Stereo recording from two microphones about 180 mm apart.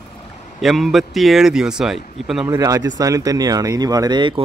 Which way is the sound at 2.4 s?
20° right (ahead or behind).